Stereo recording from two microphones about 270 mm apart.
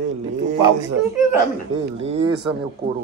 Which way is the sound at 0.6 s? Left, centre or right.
Centre.